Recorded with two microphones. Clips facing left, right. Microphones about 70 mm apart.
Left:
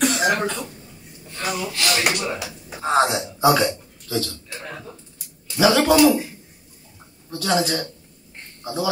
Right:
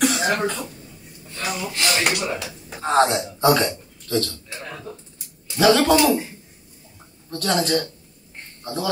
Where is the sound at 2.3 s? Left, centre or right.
Centre.